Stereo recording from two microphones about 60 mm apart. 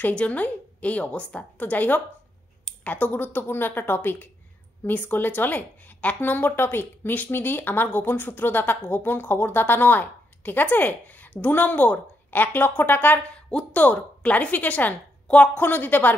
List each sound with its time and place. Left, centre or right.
0.0 s a woman's voice: left
13.3 s a sound: centre
13.7 s a woman's voice: left